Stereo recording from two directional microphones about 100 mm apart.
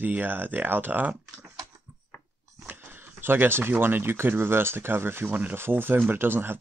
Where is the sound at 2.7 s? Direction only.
20° right (ahead or behind).